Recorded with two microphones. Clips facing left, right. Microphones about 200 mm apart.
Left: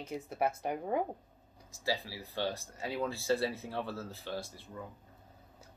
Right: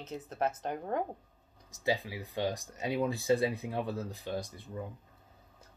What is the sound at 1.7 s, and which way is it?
Speech, 20° right (ahead or behind).